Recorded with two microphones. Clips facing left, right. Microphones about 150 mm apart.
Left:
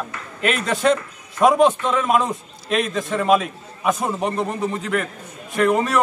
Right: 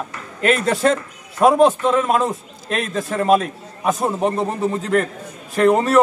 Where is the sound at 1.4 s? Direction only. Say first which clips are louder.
Right 2 dB; 5° right (ahead or behind).